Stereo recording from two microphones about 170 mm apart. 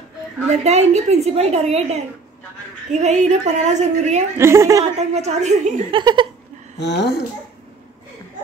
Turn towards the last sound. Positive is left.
turn(degrees=90)